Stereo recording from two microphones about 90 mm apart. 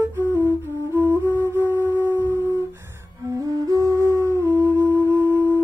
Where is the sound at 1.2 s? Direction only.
20° left (ahead or behind).